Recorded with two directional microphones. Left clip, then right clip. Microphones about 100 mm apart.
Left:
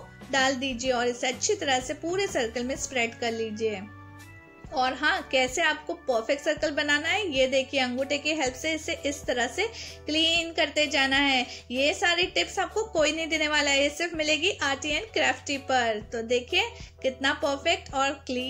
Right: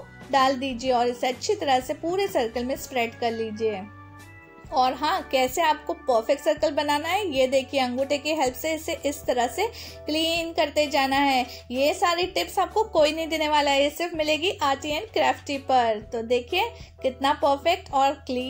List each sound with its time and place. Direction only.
0.3 s a woman's voice: 40° right (ahead or behind)